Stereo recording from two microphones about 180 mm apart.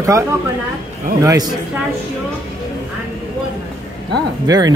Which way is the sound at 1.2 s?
20° right (ahead or behind).